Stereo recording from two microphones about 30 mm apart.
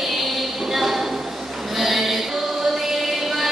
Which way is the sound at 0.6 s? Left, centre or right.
Centre.